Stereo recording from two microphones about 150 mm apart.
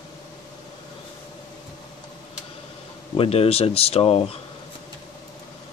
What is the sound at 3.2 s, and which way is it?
Speech, 40° left (ahead or behind).